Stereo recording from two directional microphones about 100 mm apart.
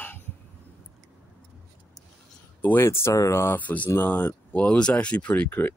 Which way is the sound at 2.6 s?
20° left (ahead or behind).